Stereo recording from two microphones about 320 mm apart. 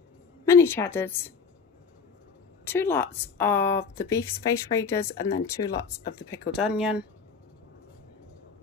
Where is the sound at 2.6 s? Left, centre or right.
Centre.